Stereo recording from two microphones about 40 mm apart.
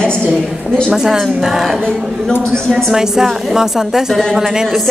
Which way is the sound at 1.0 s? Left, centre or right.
Centre.